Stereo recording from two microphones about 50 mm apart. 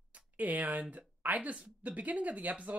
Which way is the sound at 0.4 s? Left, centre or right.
Right.